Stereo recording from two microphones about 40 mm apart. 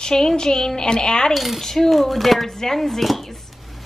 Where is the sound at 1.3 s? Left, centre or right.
Centre.